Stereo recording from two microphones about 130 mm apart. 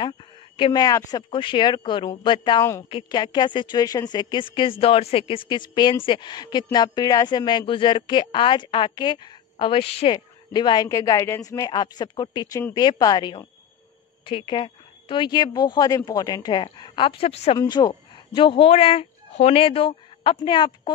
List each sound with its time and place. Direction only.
0.0 s speech: 40° left (ahead or behind)
17.6 s speech: 30° left (ahead or behind)